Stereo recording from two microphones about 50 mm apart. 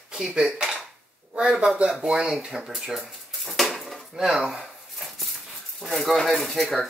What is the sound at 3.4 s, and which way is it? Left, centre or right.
Dishes, centre.